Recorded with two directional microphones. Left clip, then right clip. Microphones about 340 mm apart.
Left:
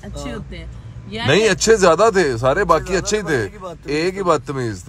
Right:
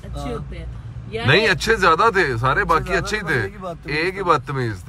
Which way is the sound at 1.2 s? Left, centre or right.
Centre.